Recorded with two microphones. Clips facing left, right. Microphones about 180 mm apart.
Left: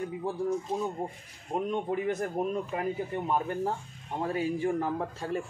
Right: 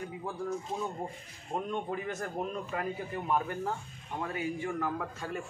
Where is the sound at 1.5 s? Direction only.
15° left (ahead or behind).